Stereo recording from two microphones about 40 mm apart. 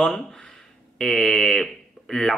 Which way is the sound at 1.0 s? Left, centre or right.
Centre.